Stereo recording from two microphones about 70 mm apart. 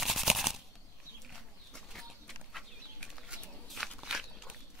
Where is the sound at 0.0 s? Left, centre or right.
Centre.